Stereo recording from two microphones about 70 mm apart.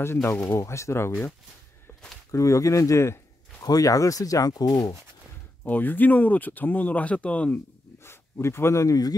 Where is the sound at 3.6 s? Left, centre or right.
Left.